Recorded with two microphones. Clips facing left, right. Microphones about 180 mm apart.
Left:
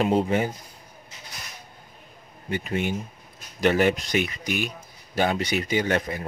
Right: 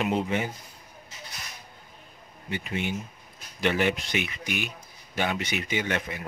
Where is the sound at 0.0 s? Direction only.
35° left (ahead or behind).